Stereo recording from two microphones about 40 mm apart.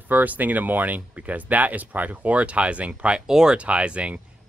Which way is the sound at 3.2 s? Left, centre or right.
Centre.